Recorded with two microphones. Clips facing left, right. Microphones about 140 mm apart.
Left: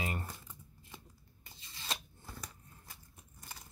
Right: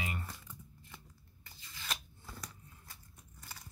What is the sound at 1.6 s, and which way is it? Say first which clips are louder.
Filing: left 1 dB; 25° left (ahead or behind).